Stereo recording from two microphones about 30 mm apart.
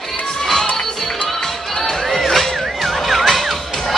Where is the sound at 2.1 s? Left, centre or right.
Centre.